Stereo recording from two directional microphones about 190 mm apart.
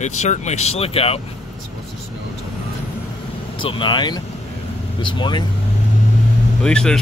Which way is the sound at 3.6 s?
25° left (ahead or behind).